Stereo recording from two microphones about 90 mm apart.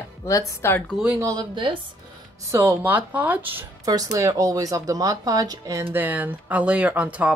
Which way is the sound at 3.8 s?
40° right (ahead or behind).